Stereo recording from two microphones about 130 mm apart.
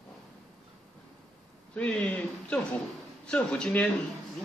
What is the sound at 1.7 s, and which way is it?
Speech, 5° left (ahead or behind).